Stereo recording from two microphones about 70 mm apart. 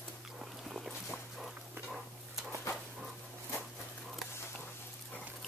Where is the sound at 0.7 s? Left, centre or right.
Centre.